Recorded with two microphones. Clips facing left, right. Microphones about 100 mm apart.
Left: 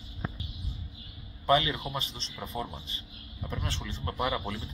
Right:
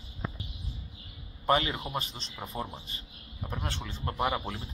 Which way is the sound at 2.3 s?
15° right (ahead or behind).